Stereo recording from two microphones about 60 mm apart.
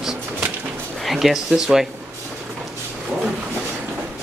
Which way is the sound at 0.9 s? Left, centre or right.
Centre.